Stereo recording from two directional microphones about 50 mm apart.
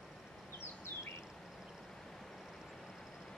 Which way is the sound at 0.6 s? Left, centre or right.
Left.